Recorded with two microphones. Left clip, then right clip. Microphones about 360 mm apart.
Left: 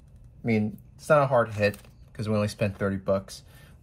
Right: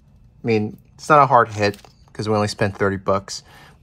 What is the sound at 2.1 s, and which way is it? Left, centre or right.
Speech, centre.